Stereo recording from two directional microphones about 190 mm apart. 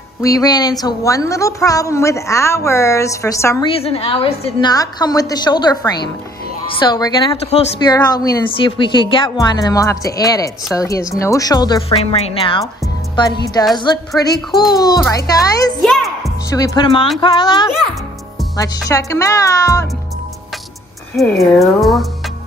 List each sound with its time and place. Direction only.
0.2 s a woman's voice: 20° left (ahead or behind)
3.6 s speech: 30° left (ahead or behind)
11.9 s speech: 30° left (ahead or behind)
13.7 s speech: 20° left (ahead or behind)
15.8 s music: centre (ahead or behind)
16.4 s speech: 20° left (ahead or behind)
18.9 s a woman's voice: 15° left (ahead or behind)
21.2 s speech: centre (ahead or behind)